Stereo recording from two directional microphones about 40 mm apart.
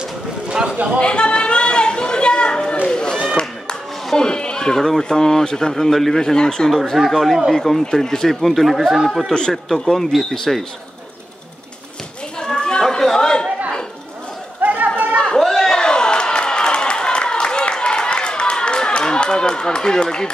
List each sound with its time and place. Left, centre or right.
0.0 s a sound: right
0.9 s a sound: left
2.9 s run: centre
4.0 s speech: centre
6.7 s speech: centre
7.5 s speech: centre
9.3 s speech: left
12.4 s children playing: left
12.8 s chatter: centre
14.6 s chatter: right
15.1 s chatter: centre
15.6 s a sound: centre